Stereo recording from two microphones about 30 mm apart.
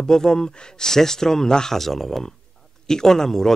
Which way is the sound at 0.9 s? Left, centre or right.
Centre.